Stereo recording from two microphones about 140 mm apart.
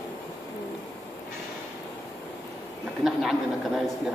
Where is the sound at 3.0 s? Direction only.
Centre (ahead or behind).